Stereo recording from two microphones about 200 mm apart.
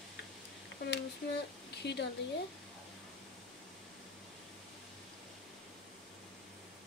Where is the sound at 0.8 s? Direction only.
60° left (ahead or behind).